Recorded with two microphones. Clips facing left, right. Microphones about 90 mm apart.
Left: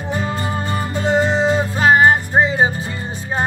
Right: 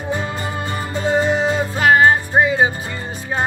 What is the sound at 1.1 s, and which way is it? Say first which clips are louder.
Music: left 1 dB; 25° left (ahead or behind).